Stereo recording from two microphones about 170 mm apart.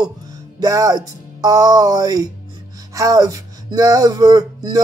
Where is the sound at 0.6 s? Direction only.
20° right (ahead or behind).